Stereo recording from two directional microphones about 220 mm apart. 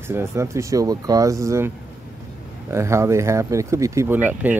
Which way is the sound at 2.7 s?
15° right (ahead or behind).